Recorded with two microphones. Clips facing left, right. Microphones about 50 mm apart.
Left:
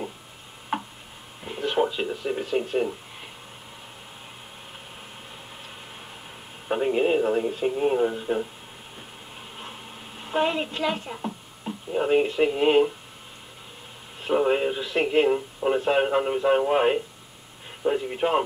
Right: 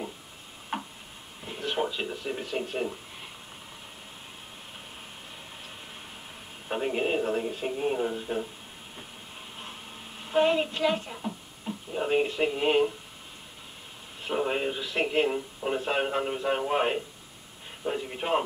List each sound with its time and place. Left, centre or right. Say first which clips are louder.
0.7 s tick-tock: left 5 dB; centre
1.4 s speech: left 6 dB; centre
6.7 s radio: left 6 dB; centre
7.5 s speech: left 6 dB; centre
9.6 s a sound: left 3 dB; centre
14.2 s speech: left 6 dB; centre